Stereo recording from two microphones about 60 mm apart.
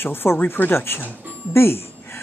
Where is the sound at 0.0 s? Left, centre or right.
Left.